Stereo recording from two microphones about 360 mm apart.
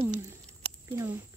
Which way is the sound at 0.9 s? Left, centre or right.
Centre.